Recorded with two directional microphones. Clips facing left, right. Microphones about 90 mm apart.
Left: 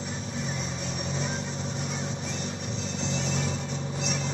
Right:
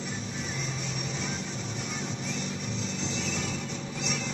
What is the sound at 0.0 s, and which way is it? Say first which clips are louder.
Vehicle: left 2 dB; 35° left (ahead or behind).